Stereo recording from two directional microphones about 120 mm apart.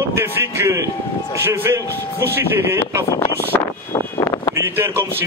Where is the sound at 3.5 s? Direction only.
25° left (ahead or behind).